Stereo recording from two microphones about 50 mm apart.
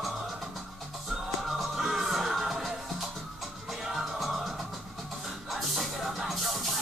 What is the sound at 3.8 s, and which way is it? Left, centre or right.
Music, centre.